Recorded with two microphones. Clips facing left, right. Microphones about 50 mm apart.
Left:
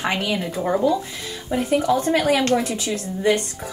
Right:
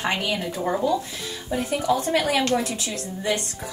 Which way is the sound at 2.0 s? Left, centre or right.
Left.